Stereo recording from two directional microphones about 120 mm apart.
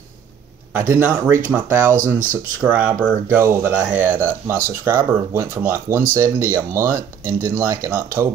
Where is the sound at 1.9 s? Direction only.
90° right.